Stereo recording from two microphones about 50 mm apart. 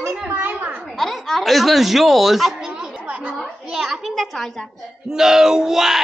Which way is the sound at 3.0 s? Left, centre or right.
Right.